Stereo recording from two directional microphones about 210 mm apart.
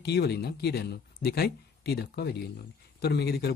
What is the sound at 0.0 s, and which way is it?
Speech, 50° left (ahead or behind).